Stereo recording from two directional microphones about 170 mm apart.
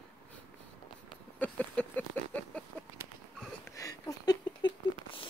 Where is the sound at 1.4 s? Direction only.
10° left (ahead or behind).